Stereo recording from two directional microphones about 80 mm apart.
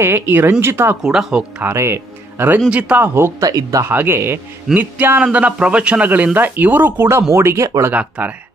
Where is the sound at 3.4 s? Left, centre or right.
Right.